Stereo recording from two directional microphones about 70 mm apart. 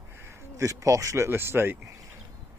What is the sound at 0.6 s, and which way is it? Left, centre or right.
Speech, right.